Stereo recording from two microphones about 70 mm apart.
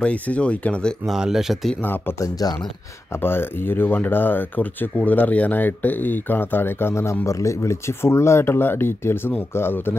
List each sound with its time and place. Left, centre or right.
0.0 s speech: centre
1.0 s speech: centre
2.1 s speech: left
3.2 s speech: left